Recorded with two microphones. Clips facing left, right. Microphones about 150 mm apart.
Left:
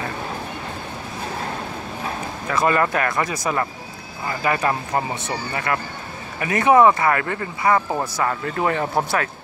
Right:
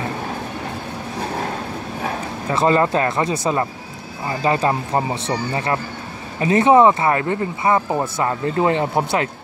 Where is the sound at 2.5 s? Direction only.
25° right (ahead or behind).